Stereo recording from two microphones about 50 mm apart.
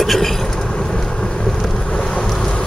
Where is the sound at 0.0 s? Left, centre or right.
Centre.